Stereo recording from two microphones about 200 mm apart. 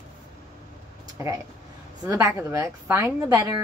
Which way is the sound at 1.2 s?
15° right (ahead or behind).